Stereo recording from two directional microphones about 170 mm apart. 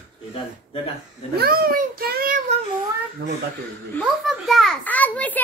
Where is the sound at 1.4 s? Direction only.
60° right (ahead or behind).